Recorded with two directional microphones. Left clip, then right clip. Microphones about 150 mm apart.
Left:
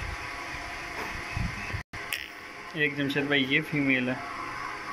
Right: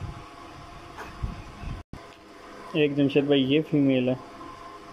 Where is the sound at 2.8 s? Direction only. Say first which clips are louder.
Right 4 dB; 60° right (ahead or behind).